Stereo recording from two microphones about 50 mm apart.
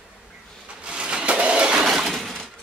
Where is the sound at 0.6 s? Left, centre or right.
Centre.